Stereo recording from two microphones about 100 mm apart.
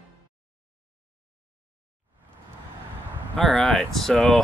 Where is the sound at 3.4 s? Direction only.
10° left (ahead or behind).